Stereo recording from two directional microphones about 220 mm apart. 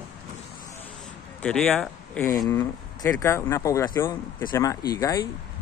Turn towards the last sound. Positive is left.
turn(degrees=15)  # may be behind; listen again after turning